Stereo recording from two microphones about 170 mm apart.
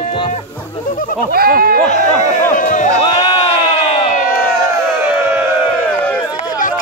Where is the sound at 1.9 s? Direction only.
45° left (ahead or behind).